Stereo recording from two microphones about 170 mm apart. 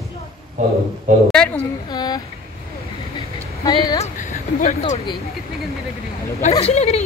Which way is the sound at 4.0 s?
50° left (ahead or behind).